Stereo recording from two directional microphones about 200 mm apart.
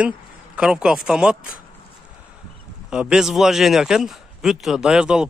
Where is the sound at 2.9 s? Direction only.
5° right (ahead or behind).